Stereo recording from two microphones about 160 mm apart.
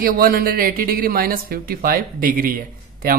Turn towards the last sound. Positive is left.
turn(degrees=-65)  # may be behind; listen again after turning